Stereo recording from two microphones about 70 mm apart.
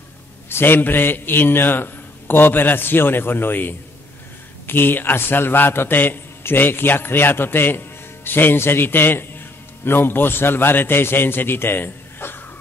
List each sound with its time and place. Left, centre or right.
0.5 s a man's voice: left